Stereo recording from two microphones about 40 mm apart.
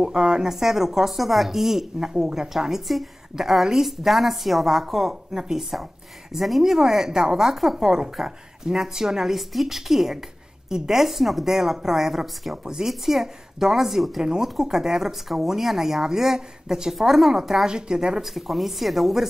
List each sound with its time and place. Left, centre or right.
0.0 s a woman's voice: centre
14.2 s a woman's voice: centre
18.2 s a woman's voice: centre